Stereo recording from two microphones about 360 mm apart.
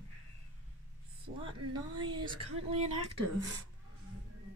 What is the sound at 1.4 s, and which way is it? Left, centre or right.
Speech, centre.